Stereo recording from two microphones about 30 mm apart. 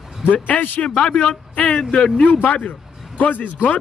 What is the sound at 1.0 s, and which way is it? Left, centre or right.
Speech, left.